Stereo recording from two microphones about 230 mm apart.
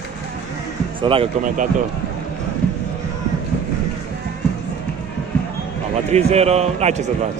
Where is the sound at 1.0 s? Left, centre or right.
Right.